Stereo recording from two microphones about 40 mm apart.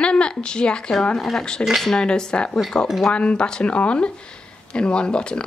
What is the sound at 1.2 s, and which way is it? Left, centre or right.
Speech, centre.